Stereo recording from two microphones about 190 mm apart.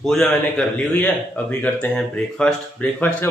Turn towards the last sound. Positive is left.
turn(degrees=5)  # may be behind; listen again after turning